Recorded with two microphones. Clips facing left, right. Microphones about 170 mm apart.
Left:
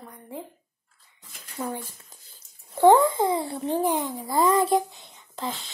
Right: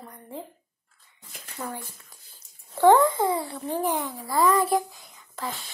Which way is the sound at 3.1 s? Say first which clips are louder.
Left 1 dB; 20° left (ahead or behind).